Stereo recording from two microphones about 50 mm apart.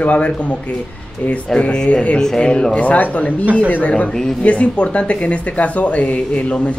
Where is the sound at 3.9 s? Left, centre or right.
Centre.